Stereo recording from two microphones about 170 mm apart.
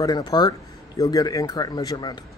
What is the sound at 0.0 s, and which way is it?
Speech, 25° left (ahead or behind).